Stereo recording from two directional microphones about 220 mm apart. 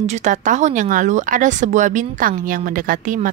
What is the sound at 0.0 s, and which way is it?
Speech, 30° right (ahead or behind).